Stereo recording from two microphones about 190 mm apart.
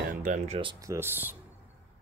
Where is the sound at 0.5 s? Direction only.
20° right (ahead or behind).